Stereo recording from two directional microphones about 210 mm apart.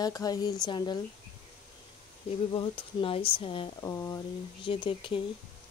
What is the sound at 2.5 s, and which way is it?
Speech, 25° left (ahead or behind).